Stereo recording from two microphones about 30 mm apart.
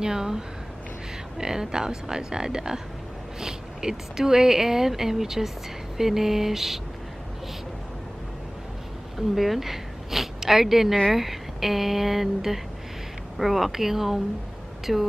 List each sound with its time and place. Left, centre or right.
0.0 s speech: right
1.4 s speech: right
9.3 s a woman's voice: centre